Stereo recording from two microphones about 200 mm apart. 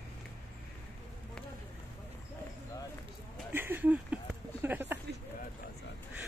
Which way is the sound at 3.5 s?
10° right (ahead or behind).